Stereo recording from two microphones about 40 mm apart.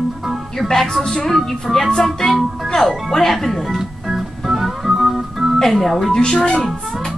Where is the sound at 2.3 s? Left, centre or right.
Centre.